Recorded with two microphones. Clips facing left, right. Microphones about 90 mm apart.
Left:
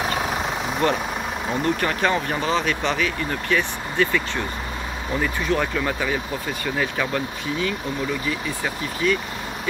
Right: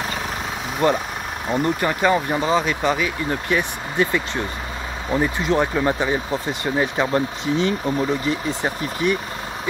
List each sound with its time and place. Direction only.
0.8 s speech: 25° right (ahead or behind)
1.5 s speech: 10° right (ahead or behind)